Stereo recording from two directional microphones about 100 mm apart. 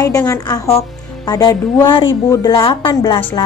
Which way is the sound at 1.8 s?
55° left (ahead or behind).